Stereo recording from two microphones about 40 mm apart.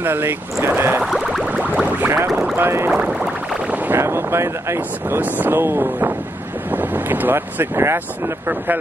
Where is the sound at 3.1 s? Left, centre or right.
Centre.